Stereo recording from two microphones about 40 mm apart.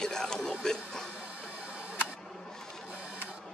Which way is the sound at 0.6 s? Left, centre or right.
Centre.